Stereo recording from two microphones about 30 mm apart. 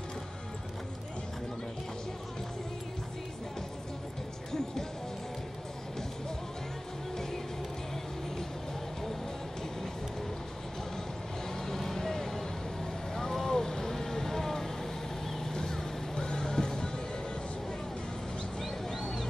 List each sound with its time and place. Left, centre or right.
11.6 s vehicle: centre
15.5 s music: left